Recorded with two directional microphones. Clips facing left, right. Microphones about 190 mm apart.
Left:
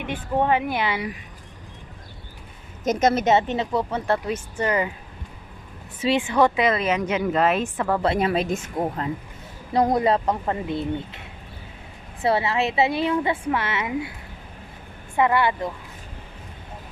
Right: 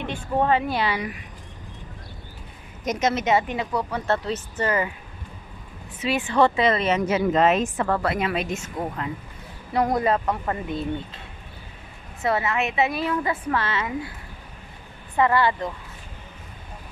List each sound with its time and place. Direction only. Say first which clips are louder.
0.4 s speech: even; 15° left (ahead or behind)
2.8 s a woman's voice: left 4 dB; 30° left (ahead or behind)
4.1 s speech: right 1 dB; 15° left (ahead or behind)
5.9 s a woman's voice: left 4 dB; 25° left (ahead or behind)
6.2 s speech: right 3 dB; 10° left (ahead or behind)
6.8 s a woman's voice: right 1 dB; centre (ahead or behind)
8.0 s speech: left 3 dB; 30° left (ahead or behind)
9.8 s a woman's voice: left 2 dB; 25° left (ahead or behind)
12.2 s a woman's voice: left 2 dB; 30° left (ahead or behind)
15.1 s speech: even; 15° left (ahead or behind)